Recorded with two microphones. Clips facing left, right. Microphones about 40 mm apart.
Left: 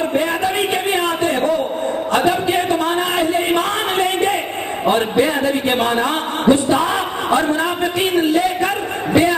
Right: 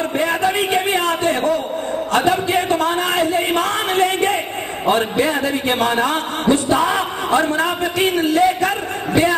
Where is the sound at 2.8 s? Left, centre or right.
Left.